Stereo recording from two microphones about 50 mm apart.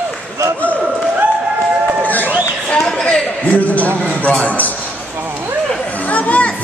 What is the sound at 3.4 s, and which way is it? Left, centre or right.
A man's voice, left.